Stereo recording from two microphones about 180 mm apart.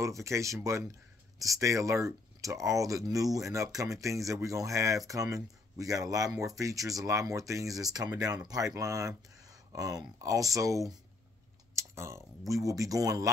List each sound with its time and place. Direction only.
0.0 s speech: 15° right (ahead or behind)